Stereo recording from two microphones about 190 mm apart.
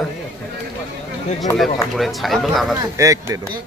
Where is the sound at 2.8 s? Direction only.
15° right (ahead or behind).